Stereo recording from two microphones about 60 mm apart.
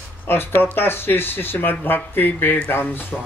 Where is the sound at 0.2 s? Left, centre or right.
Left.